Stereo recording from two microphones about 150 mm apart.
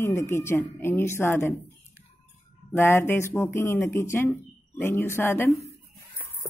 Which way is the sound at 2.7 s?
15° left (ahead or behind).